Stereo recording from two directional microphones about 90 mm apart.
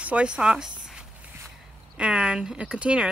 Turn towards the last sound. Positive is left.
turn(degrees=-10)  # may be behind; listen again after turning